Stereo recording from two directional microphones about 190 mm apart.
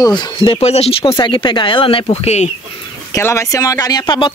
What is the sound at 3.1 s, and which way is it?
Speech, 15° left (ahead or behind).